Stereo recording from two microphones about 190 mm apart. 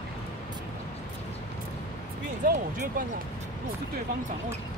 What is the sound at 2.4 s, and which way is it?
Speech, 50° right (ahead or behind).